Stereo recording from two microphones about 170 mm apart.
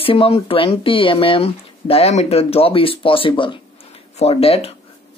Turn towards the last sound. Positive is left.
turn(degrees=35)  # may be behind; listen again after turning